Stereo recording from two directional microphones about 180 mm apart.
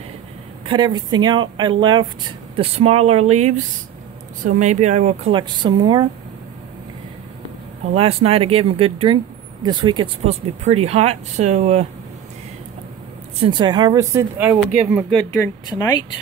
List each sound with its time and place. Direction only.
0.7 s speech: 25° right (ahead or behind)
7.9 s speech: 35° right (ahead or behind)
13.4 s speech: 25° right (ahead or behind); by 15.1 s 5° right (ahead or behind)
15.3 s speech: 15° left (ahead or behind)